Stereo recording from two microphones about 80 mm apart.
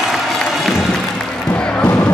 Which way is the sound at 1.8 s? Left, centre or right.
Centre.